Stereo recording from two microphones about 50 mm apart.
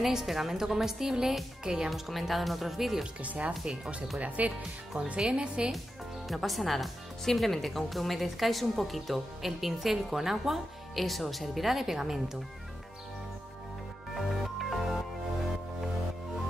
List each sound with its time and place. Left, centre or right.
0.0 s speech: centre
1.9 s speech: centre
3.2 s speech: right
6.2 s speech: centre
14.1 s music: centre